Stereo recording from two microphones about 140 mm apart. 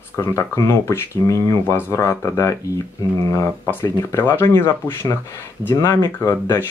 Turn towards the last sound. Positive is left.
turn(degrees=20)  # may be behind; listen again after turning